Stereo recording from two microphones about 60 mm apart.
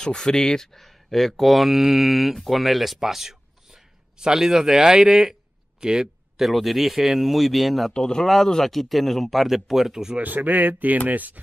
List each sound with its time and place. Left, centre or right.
0.0 s speech: centre
10.1 s speech: right